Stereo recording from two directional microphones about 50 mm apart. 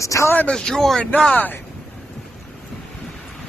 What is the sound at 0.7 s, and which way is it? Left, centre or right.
Speech, centre.